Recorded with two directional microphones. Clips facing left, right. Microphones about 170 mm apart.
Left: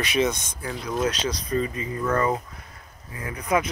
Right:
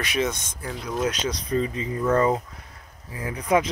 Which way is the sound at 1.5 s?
20° right (ahead or behind).